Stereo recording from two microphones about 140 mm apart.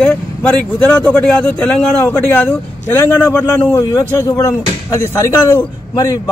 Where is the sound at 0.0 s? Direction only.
10° left (ahead or behind).